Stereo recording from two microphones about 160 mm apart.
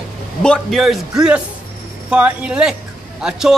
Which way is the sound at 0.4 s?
5° left (ahead or behind).